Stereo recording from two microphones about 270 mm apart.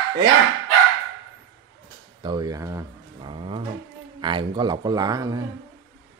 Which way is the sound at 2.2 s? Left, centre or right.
Centre.